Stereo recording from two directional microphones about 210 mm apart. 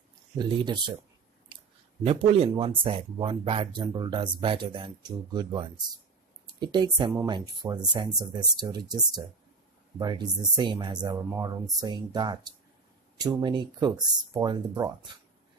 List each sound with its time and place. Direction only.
0.4 s speech: 20° right (ahead or behind)
1.5 s a sound: 25° right (ahead or behind)
2.0 s speech: 25° right (ahead or behind)